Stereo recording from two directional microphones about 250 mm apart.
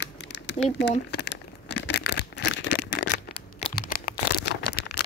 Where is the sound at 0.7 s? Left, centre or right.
Left.